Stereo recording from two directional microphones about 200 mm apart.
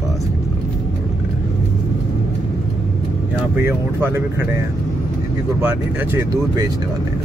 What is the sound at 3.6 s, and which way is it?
Speech, 10° right (ahead or behind).